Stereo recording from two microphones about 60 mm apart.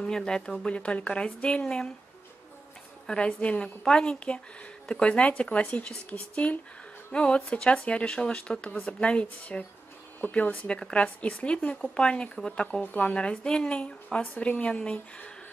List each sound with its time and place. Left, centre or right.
0.0 s speech: centre
0.7 s speech: centre
3.1 s speech: centre
12.8 s speech: left